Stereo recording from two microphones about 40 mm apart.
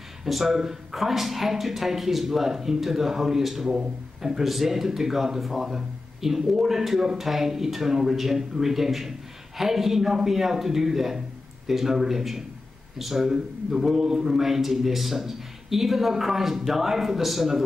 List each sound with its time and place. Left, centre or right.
0.2 s speech: centre